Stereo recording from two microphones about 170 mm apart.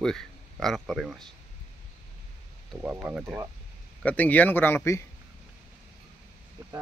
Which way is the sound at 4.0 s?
10° left (ahead or behind).